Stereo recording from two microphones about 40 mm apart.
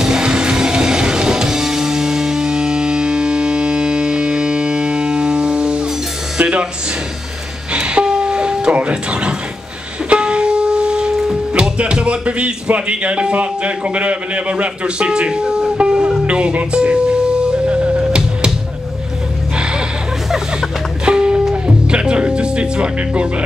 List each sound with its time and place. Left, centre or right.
0.0 s music: centre
7.7 s music: right
8.7 s speech: right
10.0 s music: right
11.8 s speech: right
16.7 s music: right
21.0 s music: right